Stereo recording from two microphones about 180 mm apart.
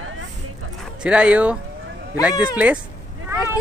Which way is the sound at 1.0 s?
5° right (ahead or behind).